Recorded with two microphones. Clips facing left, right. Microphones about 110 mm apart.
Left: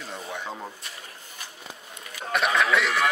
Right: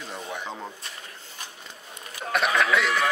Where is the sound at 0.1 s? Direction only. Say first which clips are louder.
Even; centre (ahead or behind).